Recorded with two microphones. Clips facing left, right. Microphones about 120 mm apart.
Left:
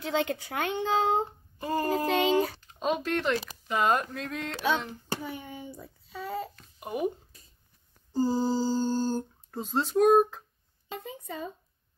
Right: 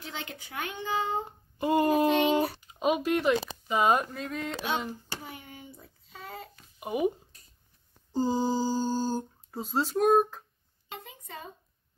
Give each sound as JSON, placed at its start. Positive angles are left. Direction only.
{"t": 0.0, "sound": "a child's voice", "side_deg": 90}
{"t": 1.6, "sound": "child singing", "side_deg": -20}
{"t": 2.7, "sound": "speech", "side_deg": -10}
{"t": 6.5, "sound": "a sound", "side_deg": -5}
{"t": 8.1, "sound": "a sound", "side_deg": -15}
{"t": 9.6, "sound": "speech", "side_deg": 0}